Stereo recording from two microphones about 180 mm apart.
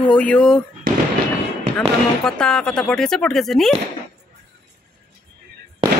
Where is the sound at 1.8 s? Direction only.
5° left (ahead or behind).